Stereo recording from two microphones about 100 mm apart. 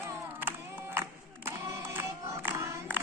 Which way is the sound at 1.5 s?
25° right (ahead or behind).